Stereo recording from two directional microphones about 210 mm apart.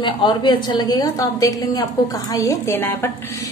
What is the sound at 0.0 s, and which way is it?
A woman's voice, 20° left (ahead or behind).